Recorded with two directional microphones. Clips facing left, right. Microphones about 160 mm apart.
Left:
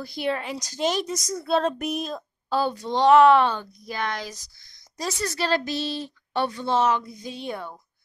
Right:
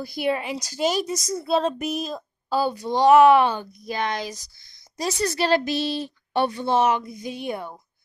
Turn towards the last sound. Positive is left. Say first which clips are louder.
# right 3 dB
turn(degrees=-15)  # may be behind; listen again after turning